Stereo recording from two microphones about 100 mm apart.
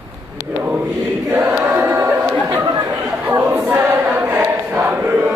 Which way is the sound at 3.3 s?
20° right (ahead or behind).